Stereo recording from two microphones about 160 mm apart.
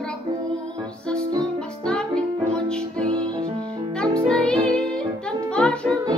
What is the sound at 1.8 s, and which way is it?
Music, 5° left (ahead or behind).